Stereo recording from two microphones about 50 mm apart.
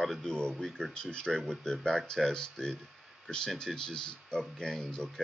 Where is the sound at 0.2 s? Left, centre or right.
Centre.